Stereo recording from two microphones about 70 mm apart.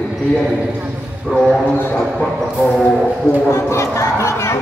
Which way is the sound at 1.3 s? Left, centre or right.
Centre.